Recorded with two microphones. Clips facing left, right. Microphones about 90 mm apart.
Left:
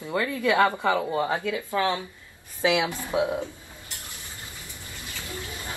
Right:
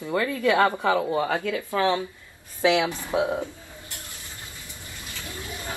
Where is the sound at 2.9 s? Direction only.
20° right (ahead or behind).